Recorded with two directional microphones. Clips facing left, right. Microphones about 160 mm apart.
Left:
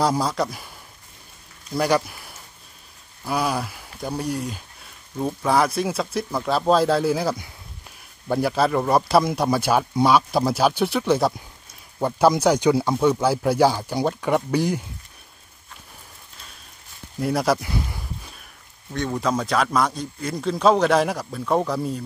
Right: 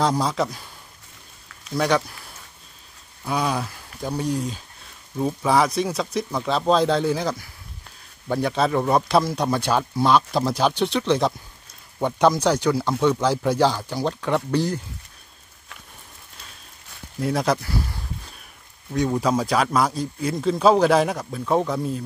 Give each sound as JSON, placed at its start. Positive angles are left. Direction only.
{"t": 0.0, "sound": "a man's voice", "side_deg": 5}
{"t": 1.8, "sound": "a man's voice", "side_deg": 5}
{"t": 3.3, "sound": "a man's voice", "side_deg": 5}
{"t": 17.2, "sound": "a man's voice", "side_deg": 5}
{"t": 17.6, "sound": "a sound", "side_deg": 15}
{"t": 18.9, "sound": "a man's voice", "side_deg": -10}